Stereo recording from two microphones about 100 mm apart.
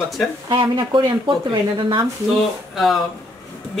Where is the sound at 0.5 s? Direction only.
50° right (ahead or behind).